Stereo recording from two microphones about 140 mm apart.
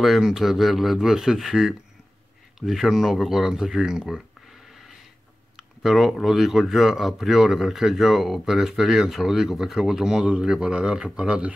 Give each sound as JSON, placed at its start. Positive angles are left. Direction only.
{"t": 0.0, "sound": "speech", "side_deg": 0}